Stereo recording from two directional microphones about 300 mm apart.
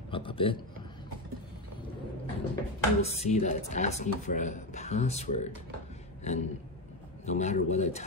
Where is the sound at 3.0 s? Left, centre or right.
Left.